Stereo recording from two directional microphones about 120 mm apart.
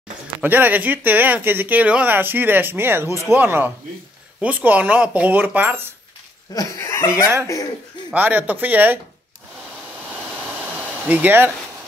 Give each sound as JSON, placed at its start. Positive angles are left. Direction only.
{"t": 0.4, "sound": "speech", "side_deg": -15}
{"t": 6.5, "sound": "speech", "side_deg": 25}
{"t": 8.1, "sound": "speech", "side_deg": -15}
{"t": 10.3, "sound": "a sound", "side_deg": -15}